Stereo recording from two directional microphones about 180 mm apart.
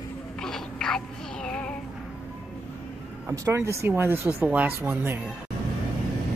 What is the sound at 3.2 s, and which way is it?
Speech, 15° right (ahead or behind).